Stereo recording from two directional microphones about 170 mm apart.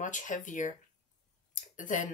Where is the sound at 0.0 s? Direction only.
45° left (ahead or behind).